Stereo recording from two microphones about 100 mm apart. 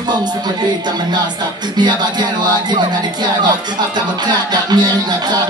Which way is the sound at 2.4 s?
45° right (ahead or behind).